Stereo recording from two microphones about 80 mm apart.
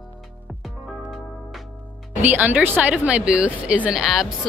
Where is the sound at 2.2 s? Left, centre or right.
Right.